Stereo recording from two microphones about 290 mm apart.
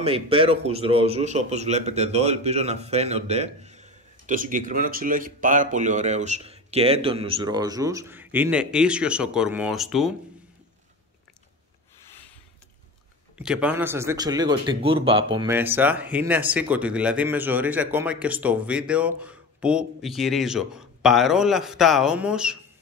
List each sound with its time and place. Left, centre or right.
0.0 s a man's voice: centre
13.4 s a man's voice: centre